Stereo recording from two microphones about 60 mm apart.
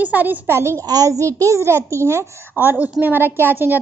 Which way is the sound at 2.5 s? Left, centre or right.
Right.